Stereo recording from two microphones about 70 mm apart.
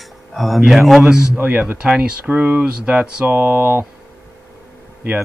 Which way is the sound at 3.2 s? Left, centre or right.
Right.